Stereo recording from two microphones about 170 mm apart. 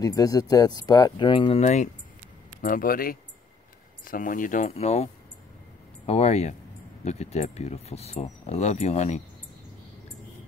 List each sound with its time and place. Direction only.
0.0 s speech: 20° left (ahead or behind); by 1.9 s 40° left (ahead or behind)
2.6 s speech: 55° left (ahead or behind); by 9.2 s 40° left (ahead or behind)